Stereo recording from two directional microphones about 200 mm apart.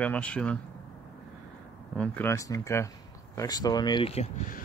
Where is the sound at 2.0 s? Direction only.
10° left (ahead or behind); by 4.6 s 35° left (ahead or behind).